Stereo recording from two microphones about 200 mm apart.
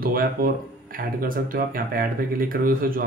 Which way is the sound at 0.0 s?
45° right (ahead or behind).